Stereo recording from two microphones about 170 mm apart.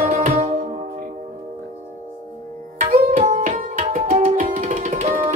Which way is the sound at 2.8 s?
40° right (ahead or behind).